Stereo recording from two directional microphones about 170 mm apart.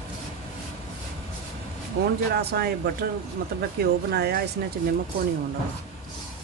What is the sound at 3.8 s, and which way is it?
Speech, 70° right (ahead or behind).